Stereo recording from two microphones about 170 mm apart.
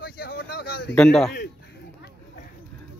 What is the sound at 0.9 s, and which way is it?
Speech, 5° left (ahead or behind).